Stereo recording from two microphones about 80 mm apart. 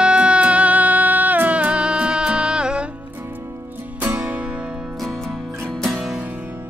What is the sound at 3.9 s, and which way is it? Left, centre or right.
Music, centre.